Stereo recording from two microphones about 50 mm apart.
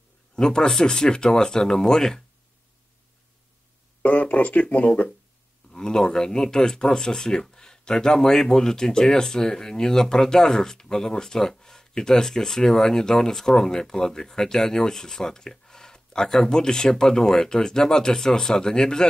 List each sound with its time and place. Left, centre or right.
0.4 s speech: centre
4.0 s speech: left
5.7 s speech: centre